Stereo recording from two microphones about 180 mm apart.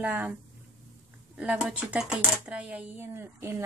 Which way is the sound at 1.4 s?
5° right (ahead or behind).